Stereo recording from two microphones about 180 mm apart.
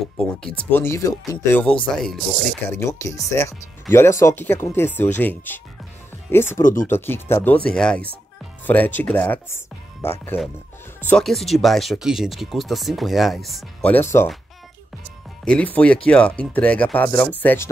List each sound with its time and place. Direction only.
0.4 s speech: 5° left (ahead or behind)
2.7 s speech: 15° left (ahead or behind)
6.6 s speech: 45° left (ahead or behind)
6.9 s speech: 15° left (ahead or behind)
13.9 s speech: 10° left (ahead or behind)
15.4 s speech: 5° left (ahead or behind)